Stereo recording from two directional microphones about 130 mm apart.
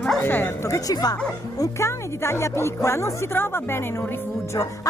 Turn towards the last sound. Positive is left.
turn(degrees=20)  # may be behind; listen again after turning